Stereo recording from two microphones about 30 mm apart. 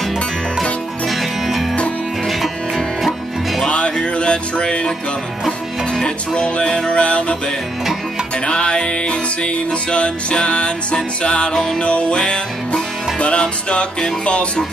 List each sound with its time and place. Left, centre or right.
3.0 s music: centre
3.6 s music: left
6.0 s music: left
8.5 s music: left
11.5 s music: centre
11.8 s music: left
12.2 s music: left